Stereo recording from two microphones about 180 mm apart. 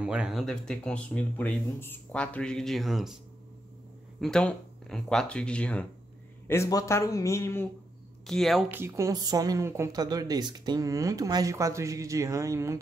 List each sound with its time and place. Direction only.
0.0 s speech: 5° right (ahead or behind)
4.2 s a man's voice: 5° left (ahead or behind)
8.3 s speech: centre (ahead or behind)
8.6 s a woman's voice: 15° right (ahead or behind)